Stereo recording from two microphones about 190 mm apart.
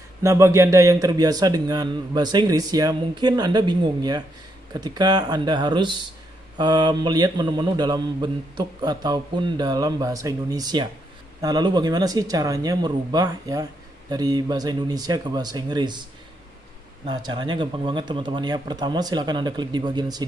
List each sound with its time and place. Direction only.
0.2 s speech: 15° right (ahead or behind)
17.3 s speech: 25° right (ahead or behind)